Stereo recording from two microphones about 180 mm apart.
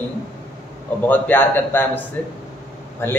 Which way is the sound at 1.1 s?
10° left (ahead or behind).